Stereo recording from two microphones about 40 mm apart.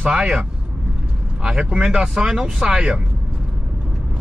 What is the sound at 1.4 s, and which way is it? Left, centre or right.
Speech, right.